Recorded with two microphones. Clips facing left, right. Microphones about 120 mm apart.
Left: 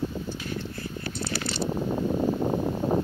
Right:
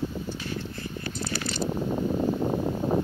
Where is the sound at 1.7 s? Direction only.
10° left (ahead or behind).